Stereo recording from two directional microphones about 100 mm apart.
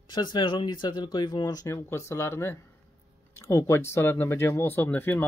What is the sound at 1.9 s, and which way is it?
Speech, 30° left (ahead or behind).